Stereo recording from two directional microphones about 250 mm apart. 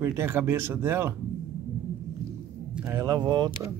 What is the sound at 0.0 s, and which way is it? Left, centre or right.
Speech, centre.